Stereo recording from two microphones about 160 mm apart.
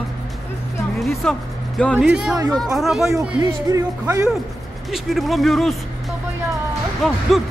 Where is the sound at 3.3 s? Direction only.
20° right (ahead or behind).